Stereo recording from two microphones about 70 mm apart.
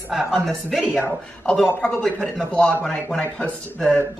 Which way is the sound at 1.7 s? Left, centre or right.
Centre.